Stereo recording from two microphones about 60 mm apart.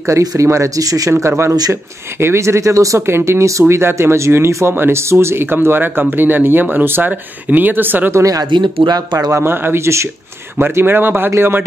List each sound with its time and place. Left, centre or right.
0.2 s speech: right
1.1 s speech: right
3.1 s speech: right
3.6 s speech: right
4.7 s speech: right
8.1 s speech: right
8.9 s speech: right
9.4 s speech: right